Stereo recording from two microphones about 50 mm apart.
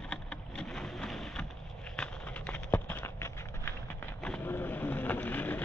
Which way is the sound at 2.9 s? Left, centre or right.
Left.